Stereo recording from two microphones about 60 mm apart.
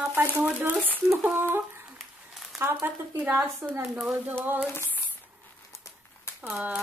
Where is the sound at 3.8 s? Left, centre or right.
Centre.